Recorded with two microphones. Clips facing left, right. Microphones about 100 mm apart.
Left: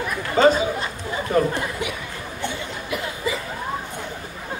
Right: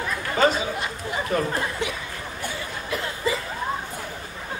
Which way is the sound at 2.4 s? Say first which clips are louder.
Left 4 dB; 25° left (ahead or behind).